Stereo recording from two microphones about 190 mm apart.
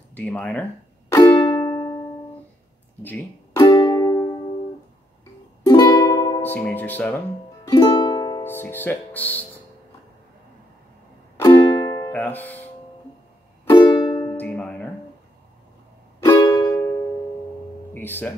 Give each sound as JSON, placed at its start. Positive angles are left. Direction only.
{"t": 0.1, "sound": "speech", "side_deg": 5}
{"t": 1.1, "sound": "music", "side_deg": 20}
{"t": 3.0, "sound": "music", "side_deg": 10}
{"t": 5.7, "sound": "music", "side_deg": 20}
{"t": 7.6, "sound": "speech", "side_deg": 20}
{"t": 11.3, "sound": "music", "side_deg": 20}
{"t": 12.1, "sound": "speech", "side_deg": 10}
{"t": 13.7, "sound": "music", "side_deg": 20}
{"t": 14.3, "sound": "music", "side_deg": 10}
{"t": 16.3, "sound": "music", "side_deg": 20}
{"t": 17.9, "sound": "speech", "side_deg": 10}